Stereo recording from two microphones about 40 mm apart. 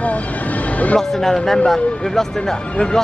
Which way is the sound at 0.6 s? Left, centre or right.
Left.